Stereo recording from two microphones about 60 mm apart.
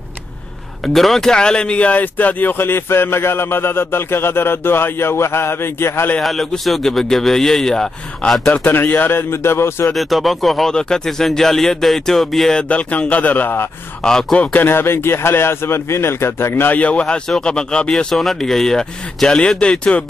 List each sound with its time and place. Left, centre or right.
0.8 s speech: centre; by 6.1 s left
6.2 s speech: centre
8.6 s speech: left
9.3 s speech: left
9.9 s speech: centre
10.7 s speech: centre
12.6 s speech: left
14.0 s speech: centre
14.4 s speech: left
16.7 s speech: left